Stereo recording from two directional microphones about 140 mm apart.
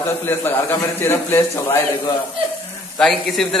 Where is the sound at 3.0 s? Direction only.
Centre (ahead or behind).